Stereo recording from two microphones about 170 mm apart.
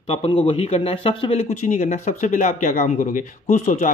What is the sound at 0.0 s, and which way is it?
A man's voice, 35° left (ahead or behind).